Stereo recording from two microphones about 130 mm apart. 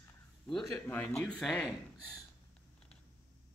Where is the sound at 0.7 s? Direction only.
15° left (ahead or behind).